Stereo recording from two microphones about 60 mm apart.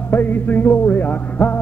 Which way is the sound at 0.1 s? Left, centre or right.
Left.